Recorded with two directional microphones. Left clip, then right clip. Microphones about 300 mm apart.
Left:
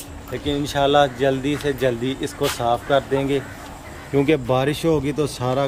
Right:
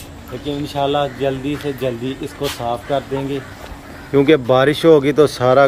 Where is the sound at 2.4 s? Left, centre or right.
Centre.